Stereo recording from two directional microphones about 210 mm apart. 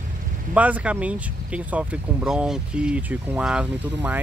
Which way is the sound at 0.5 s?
5° right (ahead or behind).